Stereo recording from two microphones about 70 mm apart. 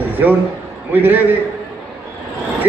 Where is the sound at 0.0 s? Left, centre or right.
Right.